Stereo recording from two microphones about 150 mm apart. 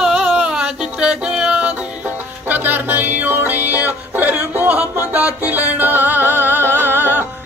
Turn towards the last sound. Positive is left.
turn(degrees=-15)  # may be behind; listen again after turning